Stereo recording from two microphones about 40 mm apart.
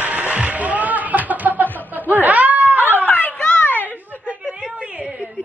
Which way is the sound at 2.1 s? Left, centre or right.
Right.